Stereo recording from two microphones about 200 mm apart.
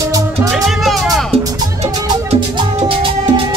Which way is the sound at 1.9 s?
25° right (ahead or behind).